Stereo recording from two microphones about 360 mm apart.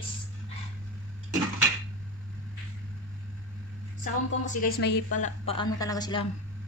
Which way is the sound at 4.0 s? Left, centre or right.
Left.